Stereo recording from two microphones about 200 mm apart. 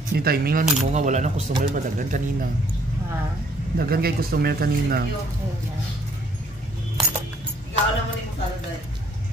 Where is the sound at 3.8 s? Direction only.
50° right (ahead or behind).